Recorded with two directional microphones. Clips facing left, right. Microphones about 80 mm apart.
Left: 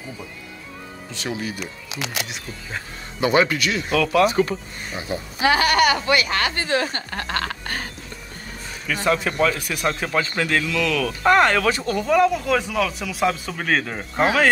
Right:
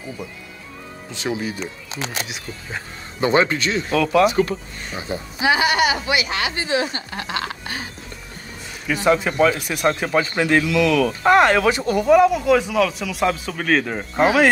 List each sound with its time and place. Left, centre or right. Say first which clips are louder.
1.1 s speech: right 3 dB; right
2.2 s speech: right 1 dB; centre
3.2 s speech: right 1 dB; right
5.4 s speech: even; left
8.8 s speech: right 3 dB; centre
14.1 s speech: right 3 dB; centre